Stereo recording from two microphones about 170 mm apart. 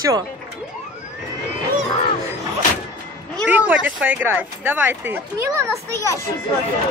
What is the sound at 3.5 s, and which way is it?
Speech, 10° right (ahead or behind).